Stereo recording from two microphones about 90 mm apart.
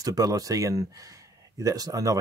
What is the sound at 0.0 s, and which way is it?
Speech, 45° right (ahead or behind).